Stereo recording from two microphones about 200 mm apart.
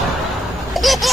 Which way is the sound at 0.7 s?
Centre (ahead or behind).